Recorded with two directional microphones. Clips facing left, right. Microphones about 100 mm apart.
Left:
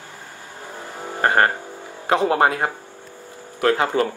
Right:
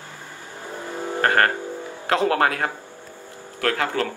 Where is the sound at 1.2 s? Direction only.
20° left (ahead or behind).